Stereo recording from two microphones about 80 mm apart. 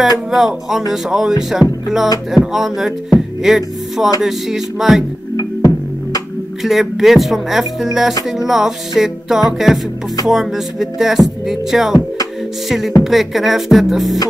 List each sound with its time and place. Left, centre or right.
0.3 s music: centre
5.3 s music: left
6.6 s music: centre